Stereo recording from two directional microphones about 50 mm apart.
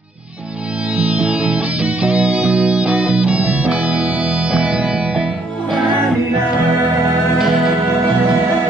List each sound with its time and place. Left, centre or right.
0.9 s music: right
7.3 s music: centre